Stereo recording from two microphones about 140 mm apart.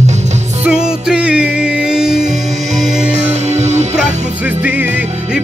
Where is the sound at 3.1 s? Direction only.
55° right (ahead or behind).